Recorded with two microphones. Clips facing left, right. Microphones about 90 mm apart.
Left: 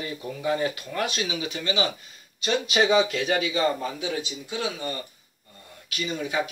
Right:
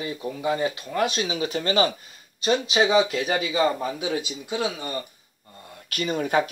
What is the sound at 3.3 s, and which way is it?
Speech, 35° right (ahead or behind).